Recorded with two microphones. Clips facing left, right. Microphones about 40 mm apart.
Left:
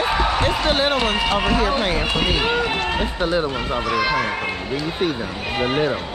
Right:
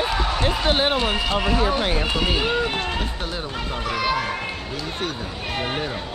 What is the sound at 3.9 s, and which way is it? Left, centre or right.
Speech, centre.